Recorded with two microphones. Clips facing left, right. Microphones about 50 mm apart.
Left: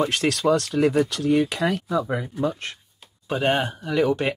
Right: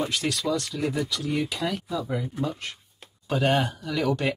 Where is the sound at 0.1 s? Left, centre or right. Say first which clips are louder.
Left 6 dB; left.